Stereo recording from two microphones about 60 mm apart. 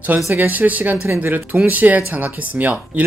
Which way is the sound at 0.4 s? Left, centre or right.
Right.